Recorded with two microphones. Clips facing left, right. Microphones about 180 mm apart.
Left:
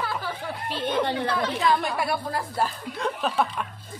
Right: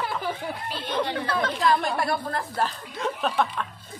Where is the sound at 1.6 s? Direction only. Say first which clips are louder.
Right 2 dB; centre (ahead or behind).